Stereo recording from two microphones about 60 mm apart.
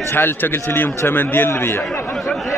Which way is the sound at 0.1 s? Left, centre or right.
Left.